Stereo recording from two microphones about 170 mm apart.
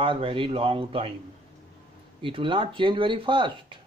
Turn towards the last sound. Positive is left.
turn(degrees=-30)  # may be behind; listen again after turning